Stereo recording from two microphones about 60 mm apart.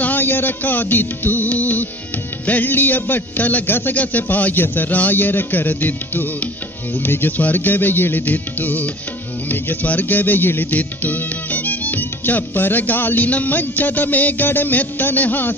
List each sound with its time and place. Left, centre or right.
0.0 s music: left